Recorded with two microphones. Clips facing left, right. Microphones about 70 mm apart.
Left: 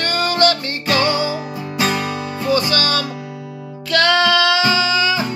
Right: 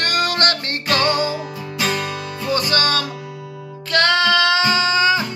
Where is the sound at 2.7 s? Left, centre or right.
Right.